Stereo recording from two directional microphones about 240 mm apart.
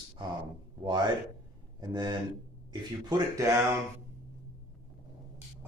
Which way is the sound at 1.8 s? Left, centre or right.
Centre.